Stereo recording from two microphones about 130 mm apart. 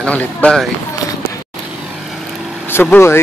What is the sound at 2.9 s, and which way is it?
Speech, 20° left (ahead or behind).